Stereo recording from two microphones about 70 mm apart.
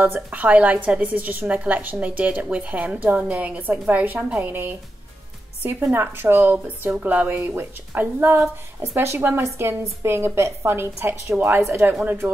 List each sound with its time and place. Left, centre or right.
0.0 s a woman's voice: right
8.8 s a woman's voice: right